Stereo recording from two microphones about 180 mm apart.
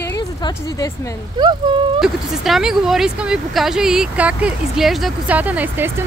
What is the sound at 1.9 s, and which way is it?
Speech, centre (ahead or behind).